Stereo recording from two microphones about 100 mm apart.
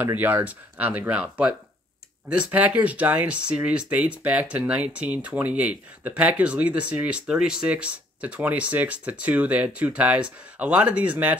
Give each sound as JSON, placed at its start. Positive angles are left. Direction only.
{"t": 0.0, "sound": "speech", "side_deg": -15}